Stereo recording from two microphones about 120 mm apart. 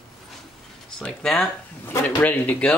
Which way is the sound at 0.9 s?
5° left (ahead or behind).